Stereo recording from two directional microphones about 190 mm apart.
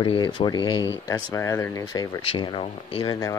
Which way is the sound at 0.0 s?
25° left (ahead or behind).